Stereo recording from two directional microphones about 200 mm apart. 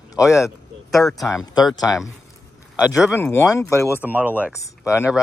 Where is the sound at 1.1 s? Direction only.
Centre (ahead or behind).